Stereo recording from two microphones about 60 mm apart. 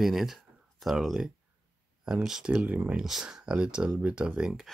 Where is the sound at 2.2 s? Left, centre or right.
Centre.